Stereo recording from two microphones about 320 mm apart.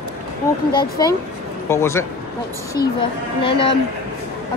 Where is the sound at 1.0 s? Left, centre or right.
Centre.